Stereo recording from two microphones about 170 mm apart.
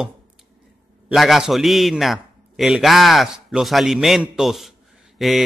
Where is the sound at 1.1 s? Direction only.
Centre (ahead or behind).